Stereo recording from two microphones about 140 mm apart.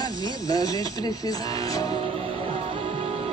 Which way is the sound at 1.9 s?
40° right (ahead or behind).